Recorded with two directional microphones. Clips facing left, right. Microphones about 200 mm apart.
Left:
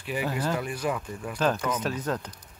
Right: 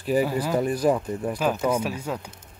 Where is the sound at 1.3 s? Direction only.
10° right (ahead or behind).